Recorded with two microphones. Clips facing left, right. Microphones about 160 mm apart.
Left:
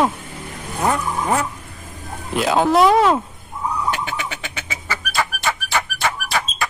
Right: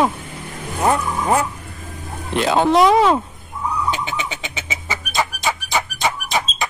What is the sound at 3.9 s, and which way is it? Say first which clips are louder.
Music: right 1 dB; 20° right (ahead or behind).